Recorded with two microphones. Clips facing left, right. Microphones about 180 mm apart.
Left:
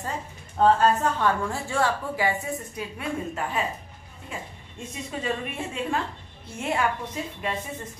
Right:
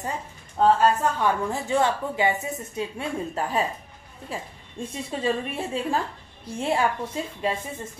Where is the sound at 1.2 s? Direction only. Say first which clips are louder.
Right 1 dB; 20° right (ahead or behind).